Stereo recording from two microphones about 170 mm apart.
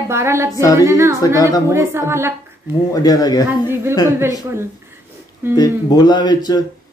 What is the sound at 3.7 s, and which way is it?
Speech, 15° right (ahead or behind).